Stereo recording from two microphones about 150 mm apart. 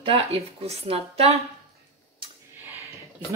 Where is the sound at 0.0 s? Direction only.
40° right (ahead or behind).